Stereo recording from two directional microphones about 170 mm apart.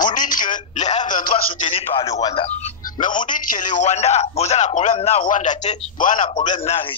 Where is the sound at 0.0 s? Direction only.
50° left (ahead or behind).